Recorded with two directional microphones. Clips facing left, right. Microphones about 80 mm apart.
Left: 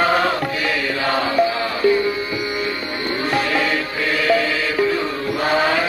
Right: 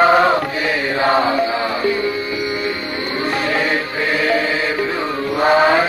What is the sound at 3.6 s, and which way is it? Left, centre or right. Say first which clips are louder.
Music: right 2 dB; right.